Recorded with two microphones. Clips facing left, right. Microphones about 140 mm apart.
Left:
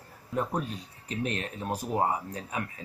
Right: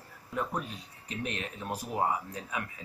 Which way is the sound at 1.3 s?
40° left (ahead or behind).